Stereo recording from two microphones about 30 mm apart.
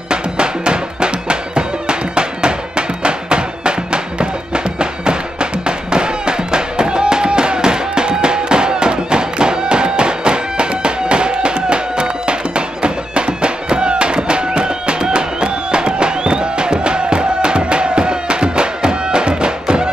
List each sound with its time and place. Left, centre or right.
0.1 s music: right